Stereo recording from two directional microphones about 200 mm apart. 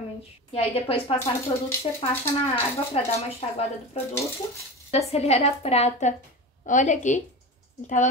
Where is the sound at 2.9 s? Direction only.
30° left (ahead or behind).